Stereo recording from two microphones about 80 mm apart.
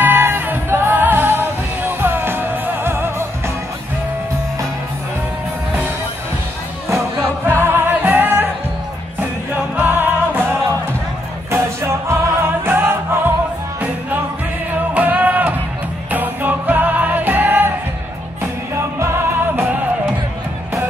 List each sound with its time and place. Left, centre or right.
0.0 s music: right
6.9 s music: right
9.8 s music: right
11.5 s music: right
15.0 s music: right
18.9 s music: right